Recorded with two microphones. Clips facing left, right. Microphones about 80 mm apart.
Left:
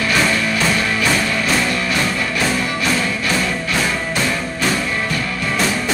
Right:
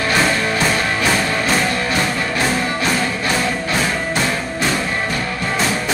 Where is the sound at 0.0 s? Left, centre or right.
Right.